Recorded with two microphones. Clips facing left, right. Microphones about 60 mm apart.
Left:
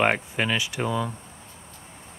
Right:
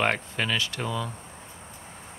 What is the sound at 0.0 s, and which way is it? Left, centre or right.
Speech, centre.